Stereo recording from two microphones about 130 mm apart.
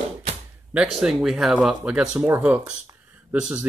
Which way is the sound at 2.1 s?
20° right (ahead or behind).